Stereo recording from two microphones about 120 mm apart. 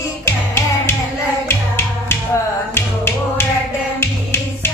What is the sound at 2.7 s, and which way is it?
Music, 20° left (ahead or behind).